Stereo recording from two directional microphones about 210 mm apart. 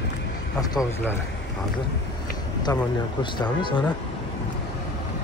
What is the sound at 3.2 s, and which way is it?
Speech, 20° left (ahead or behind).